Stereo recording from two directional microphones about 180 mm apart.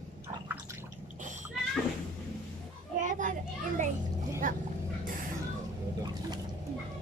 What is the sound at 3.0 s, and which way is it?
Children playing, 45° right (ahead or behind).